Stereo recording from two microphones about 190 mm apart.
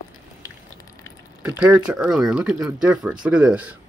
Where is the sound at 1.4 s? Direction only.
5° right (ahead or behind).